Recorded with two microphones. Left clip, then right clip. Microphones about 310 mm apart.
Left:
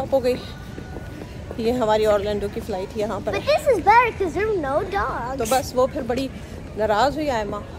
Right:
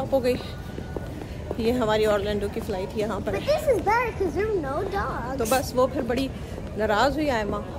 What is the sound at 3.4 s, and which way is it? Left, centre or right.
Speech, centre.